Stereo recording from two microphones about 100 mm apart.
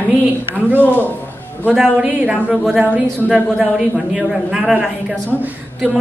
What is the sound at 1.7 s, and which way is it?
A man's voice, 5° right (ahead or behind).